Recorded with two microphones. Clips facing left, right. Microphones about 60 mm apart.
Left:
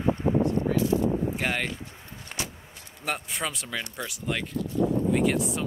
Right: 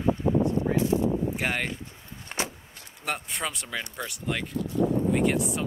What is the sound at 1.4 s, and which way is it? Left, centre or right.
Speech, centre.